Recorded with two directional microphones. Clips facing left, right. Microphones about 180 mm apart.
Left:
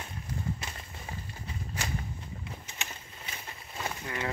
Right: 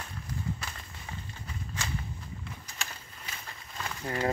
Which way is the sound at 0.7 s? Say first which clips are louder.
Left 1 dB; 30° left (ahead or behind).